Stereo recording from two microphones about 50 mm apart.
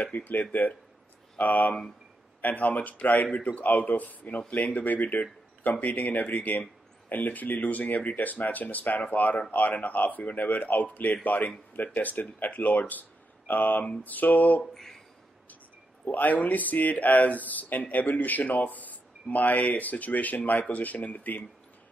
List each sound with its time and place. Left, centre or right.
0.0 s speech: left
14.6 s a sound: centre
16.1 s speech: left